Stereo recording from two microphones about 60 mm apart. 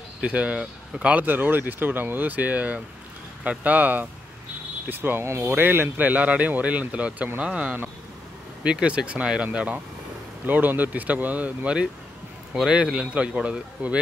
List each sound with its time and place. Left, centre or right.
0.2 s a man's voice: right
1.1 s a man's voice: right
5.2 s speech: right
5.6 s a man's voice: right
10.4 s a man's voice: right